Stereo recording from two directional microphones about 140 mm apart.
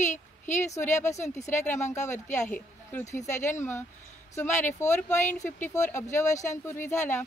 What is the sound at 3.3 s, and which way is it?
Speech, 20° left (ahead or behind).